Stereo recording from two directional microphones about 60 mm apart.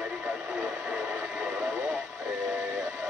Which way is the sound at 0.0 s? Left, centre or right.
Centre.